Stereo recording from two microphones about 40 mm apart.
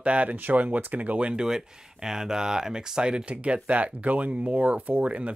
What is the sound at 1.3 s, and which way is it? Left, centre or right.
Speech, centre.